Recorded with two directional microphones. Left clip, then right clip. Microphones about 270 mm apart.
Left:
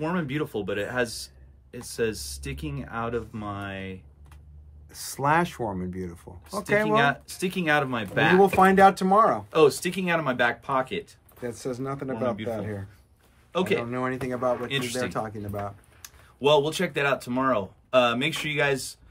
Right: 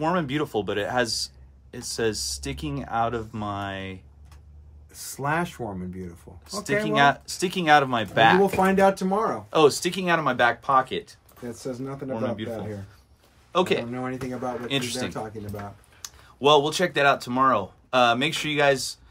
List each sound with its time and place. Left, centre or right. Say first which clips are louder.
0.0 s speech: right 4 dB; centre
4.9 s speech: left 4 dB; centre
6.6 s speech: right 1 dB; centre
8.6 s speech: left 3 dB; centre
9.5 s speech: right 1 dB; centre
11.8 s speech: left 2 dB; centre
12.2 s speech: left 1 dB; centre
13.5 s speech: right 3 dB; centre
13.9 s speech: left 3 dB; centre
14.7 s speech: even; centre